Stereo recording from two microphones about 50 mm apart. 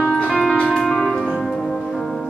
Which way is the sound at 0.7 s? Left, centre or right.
Centre.